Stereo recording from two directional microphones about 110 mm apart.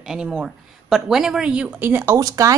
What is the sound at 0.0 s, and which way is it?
A woman's voice, 5° right (ahead or behind).